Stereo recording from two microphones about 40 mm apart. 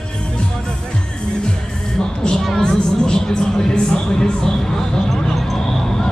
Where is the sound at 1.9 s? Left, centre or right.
Centre.